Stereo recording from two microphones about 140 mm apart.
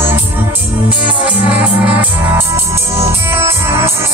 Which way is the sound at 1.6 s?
10° right (ahead or behind).